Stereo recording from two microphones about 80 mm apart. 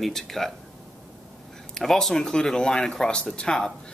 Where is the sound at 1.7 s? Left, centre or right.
Centre.